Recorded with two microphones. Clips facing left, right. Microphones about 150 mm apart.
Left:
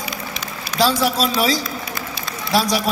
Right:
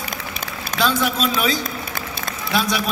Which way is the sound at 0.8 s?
35° left (ahead or behind).